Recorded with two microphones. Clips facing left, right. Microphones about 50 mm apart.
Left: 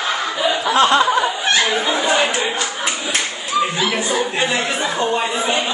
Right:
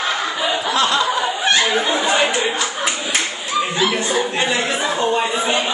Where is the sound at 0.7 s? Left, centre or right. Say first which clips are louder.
Left 5 dB; left.